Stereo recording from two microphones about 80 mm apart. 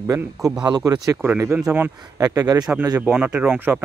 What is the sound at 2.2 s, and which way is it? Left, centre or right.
Speech, right.